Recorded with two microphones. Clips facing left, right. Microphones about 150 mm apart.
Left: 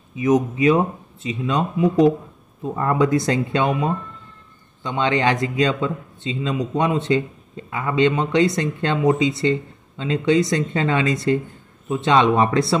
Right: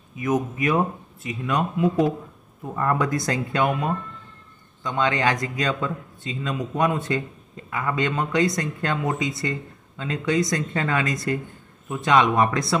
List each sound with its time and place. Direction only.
0.2 s a man's voice: 20° left (ahead or behind)